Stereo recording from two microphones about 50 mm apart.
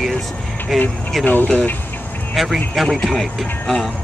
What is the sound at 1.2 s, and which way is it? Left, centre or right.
Speech, left.